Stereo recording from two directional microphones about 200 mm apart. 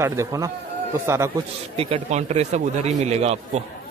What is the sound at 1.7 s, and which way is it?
Speech, 30° right (ahead or behind).